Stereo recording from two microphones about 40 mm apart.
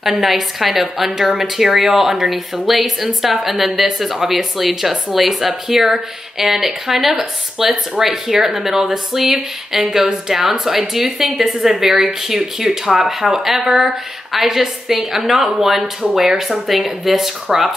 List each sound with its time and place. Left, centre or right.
0.0 s speech: centre